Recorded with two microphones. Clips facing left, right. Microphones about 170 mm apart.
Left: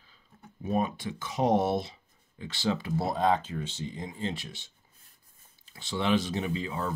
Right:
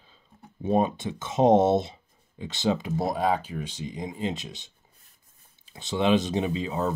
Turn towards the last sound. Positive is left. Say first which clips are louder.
# right 5 dB
turn(degrees=-20)  # may be behind; listen again after turning